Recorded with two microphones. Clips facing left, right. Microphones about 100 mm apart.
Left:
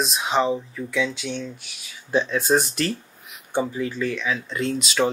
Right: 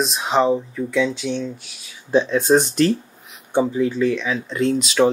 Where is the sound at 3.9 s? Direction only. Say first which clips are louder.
Right 5 dB; centre (ahead or behind).